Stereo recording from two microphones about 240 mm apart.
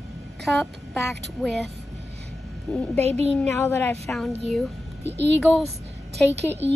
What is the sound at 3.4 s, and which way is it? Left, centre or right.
Speech, centre.